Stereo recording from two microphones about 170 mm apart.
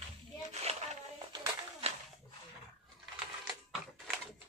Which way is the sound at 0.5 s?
40° right (ahead or behind).